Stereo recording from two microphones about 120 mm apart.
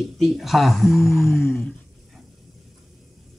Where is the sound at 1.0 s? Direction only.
20° left (ahead or behind).